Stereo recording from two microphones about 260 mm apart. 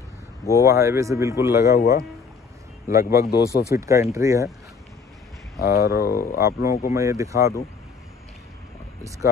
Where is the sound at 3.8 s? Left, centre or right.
Centre.